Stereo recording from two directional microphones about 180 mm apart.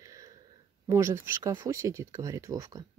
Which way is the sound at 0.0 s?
20° right (ahead or behind).